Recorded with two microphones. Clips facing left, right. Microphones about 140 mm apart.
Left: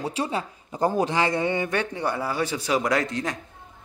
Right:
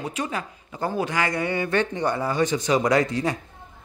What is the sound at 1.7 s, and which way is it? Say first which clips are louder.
A man's voice: right 3 dB; 5° left (ahead or behind).